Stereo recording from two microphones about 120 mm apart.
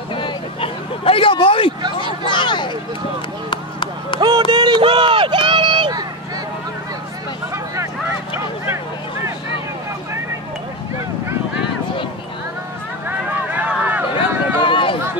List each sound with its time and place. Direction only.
0.1 s hubbub: 45° left (ahead or behind)
2.2 s speech: 40° left (ahead or behind)
3.4 s a sound: 45° left (ahead or behind)
4.2 s run: 35° right (ahead or behind)
7.5 s vehicle: 25° right (ahead or behind)
13.6 s a sound: 10° right (ahead or behind)
14.6 s run: 45° left (ahead or behind)